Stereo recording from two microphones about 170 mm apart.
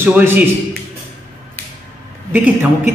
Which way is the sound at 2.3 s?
10° right (ahead or behind).